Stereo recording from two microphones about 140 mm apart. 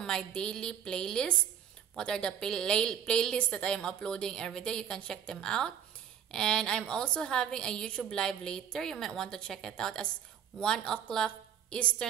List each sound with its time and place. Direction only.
0.0 s a woman's voice: 5° left (ahead or behind)